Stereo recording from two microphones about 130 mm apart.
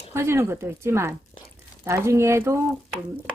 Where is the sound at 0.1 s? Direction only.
20° right (ahead or behind).